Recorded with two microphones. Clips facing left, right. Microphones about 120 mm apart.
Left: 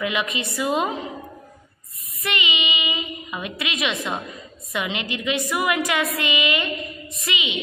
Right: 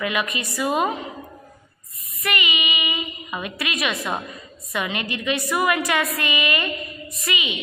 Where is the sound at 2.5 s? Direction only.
20° left (ahead or behind).